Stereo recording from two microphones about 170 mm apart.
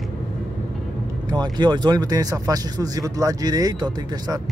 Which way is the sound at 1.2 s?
25° right (ahead or behind).